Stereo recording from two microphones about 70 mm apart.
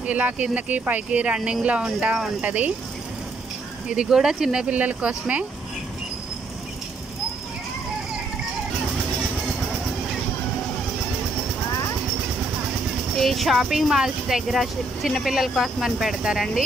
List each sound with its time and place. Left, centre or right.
0.0 s speech: centre
3.9 s speech: centre
13.2 s speech: centre